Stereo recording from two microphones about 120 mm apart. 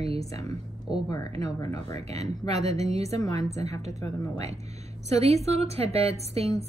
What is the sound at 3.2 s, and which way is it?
Speech, 30° left (ahead or behind).